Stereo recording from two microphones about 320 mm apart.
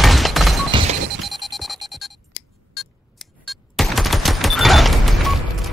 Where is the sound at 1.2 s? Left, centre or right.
Centre.